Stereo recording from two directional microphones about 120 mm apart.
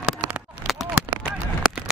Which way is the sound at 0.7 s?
5° right (ahead or behind).